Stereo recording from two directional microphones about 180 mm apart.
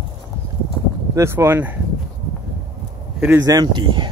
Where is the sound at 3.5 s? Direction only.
25° right (ahead or behind).